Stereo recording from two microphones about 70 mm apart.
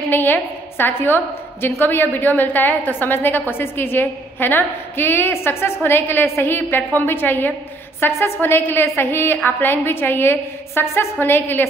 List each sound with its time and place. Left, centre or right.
0.1 s a woman's voice: left